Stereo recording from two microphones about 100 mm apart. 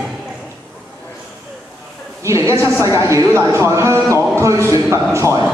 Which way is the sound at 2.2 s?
30° right (ahead or behind).